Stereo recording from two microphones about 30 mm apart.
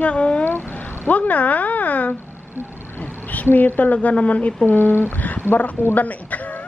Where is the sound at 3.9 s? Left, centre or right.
Left.